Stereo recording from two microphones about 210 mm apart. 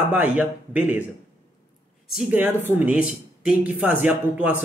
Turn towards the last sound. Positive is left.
turn(degrees=-5)  # may be behind; listen again after turning